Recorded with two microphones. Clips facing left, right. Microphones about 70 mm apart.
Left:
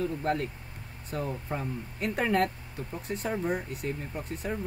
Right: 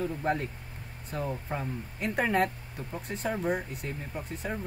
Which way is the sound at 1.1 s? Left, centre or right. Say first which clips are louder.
Even; centre.